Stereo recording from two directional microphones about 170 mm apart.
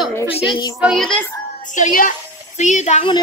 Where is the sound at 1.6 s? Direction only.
50° left (ahead or behind).